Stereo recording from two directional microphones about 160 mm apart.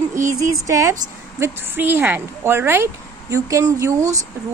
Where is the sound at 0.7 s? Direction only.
20° right (ahead or behind).